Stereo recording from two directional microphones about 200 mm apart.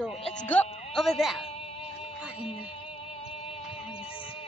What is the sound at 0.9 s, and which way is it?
Speech, centre (ahead or behind).